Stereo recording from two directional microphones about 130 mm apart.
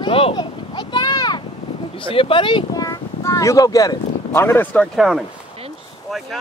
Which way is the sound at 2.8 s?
25° left (ahead or behind).